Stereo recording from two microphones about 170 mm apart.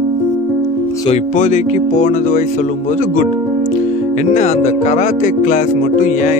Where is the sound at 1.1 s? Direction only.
45° left (ahead or behind).